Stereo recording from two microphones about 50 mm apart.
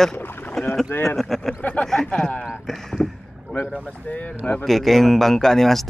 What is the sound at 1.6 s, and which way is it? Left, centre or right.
Speech, left.